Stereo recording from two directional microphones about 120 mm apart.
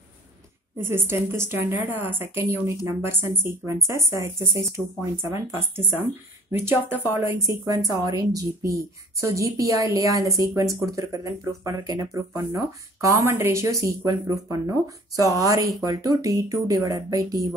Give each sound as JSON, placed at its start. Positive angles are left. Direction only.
{"t": 0.7, "sound": "speech", "side_deg": -20}